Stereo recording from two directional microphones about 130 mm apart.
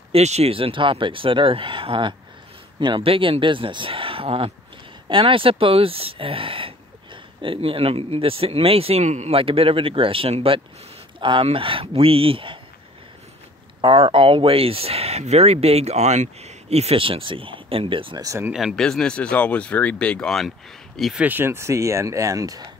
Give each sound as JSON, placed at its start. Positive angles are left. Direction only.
{"t": 0.1, "sound": "speech", "side_deg": -55}
{"t": 13.7, "sound": "speech", "side_deg": -45}
{"t": 18.2, "sound": "speech", "side_deg": -25}
{"t": 18.5, "sound": "speech", "side_deg": 0}
{"t": 21.2, "sound": "speech", "side_deg": -15}